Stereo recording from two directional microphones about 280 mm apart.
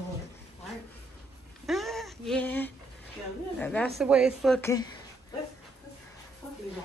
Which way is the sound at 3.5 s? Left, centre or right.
Centre.